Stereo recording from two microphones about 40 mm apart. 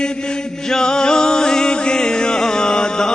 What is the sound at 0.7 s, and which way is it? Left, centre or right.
Music, centre.